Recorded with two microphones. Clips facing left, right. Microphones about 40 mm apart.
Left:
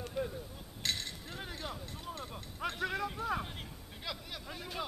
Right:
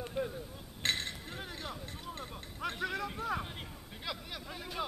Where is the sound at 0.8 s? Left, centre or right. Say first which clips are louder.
Right 3 dB; right.